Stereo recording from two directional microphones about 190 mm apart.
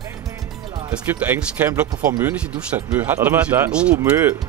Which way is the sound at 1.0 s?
10° right (ahead or behind).